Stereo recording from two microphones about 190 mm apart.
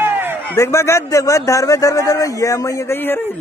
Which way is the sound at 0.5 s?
15° left (ahead or behind).